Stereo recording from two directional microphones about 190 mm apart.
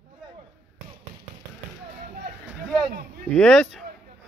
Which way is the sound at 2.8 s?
55° right (ahead or behind).